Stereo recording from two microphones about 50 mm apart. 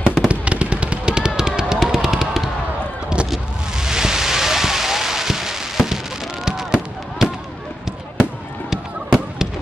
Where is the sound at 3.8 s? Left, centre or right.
Centre.